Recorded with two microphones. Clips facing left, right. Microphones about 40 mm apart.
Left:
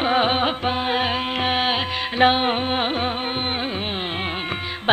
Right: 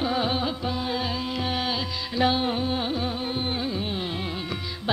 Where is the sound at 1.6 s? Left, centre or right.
Left.